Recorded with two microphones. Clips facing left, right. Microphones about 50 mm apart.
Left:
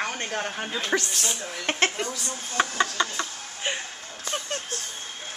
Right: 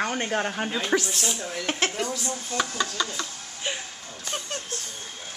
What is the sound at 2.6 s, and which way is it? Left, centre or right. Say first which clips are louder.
Speech: left 4 dB; left.